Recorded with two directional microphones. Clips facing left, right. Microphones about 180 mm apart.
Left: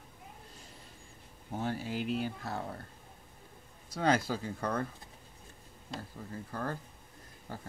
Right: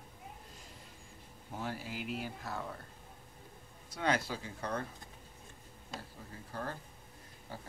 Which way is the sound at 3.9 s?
40° left (ahead or behind).